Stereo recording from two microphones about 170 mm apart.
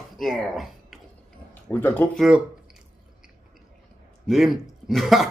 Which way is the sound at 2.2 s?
5° right (ahead or behind).